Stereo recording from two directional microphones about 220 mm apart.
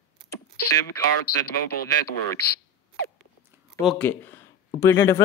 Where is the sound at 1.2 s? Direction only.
45° left (ahead or behind).